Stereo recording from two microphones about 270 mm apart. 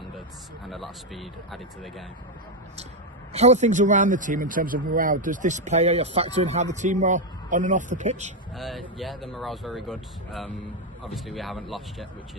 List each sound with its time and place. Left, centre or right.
1.1 s speech: centre
3.3 s a man's voice: right
8.5 s speech: centre